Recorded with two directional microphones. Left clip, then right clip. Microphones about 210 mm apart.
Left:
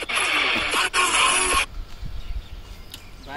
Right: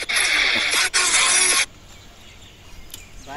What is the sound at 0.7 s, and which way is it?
Music, 30° left (ahead or behind).